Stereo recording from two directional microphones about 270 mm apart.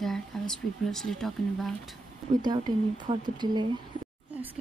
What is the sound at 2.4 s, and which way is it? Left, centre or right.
Speech, centre.